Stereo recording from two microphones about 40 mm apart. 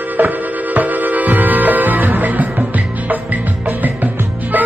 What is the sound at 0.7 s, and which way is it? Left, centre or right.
Music, right.